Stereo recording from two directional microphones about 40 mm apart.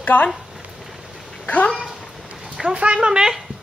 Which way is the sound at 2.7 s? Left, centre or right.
Right.